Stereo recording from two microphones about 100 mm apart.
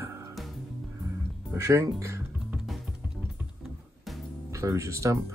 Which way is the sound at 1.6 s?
30° right (ahead or behind).